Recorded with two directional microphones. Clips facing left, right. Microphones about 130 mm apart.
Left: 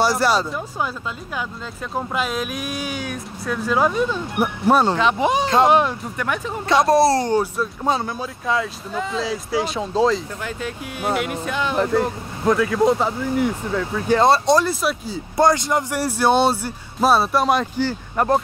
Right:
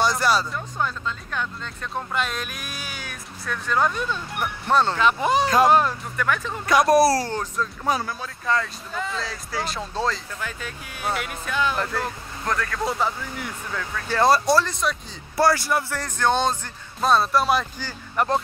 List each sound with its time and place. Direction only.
0.0 s speech: 10° left (ahead or behind)
5.0 s speech: centre (ahead or behind)
6.6 s speech: 25° left (ahead or behind)
7.3 s speech: 10° left (ahead or behind)
7.8 s speech: 25° left (ahead or behind)
8.5 s speech: 5° left (ahead or behind)
12.8 s speech: 20° left (ahead or behind)
14.7 s speech: 5° left (ahead or behind)
15.3 s speech: 20° left (ahead or behind); by 17.5 s 5° left (ahead or behind)
18.1 s speech: 25° left (ahead or behind)